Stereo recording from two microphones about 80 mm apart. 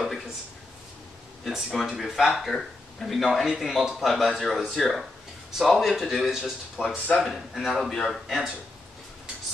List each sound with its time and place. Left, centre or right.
1.4 s speech: centre